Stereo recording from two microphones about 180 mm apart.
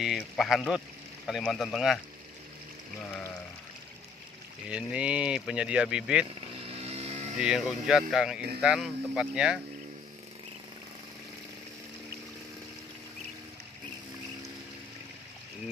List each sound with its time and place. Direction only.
0.0 s speech: centre (ahead or behind)
4.6 s speech: 5° right (ahead or behind)
6.6 s vehicle: 35° right (ahead or behind)
7.3 s speech: 5° right (ahead or behind)